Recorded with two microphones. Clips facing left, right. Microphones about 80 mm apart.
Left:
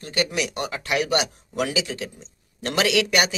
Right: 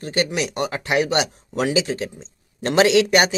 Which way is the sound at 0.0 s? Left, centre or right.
Right.